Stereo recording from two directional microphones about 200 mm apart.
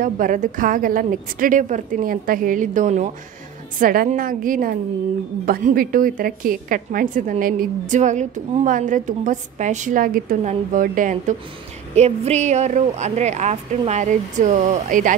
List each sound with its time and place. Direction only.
0.0 s a woman's voice: 40° right (ahead or behind)